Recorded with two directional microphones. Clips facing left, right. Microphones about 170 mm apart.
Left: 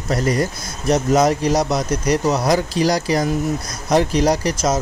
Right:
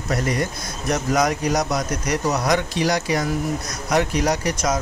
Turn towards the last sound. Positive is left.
turn(degrees=30)  # may be behind; listen again after turning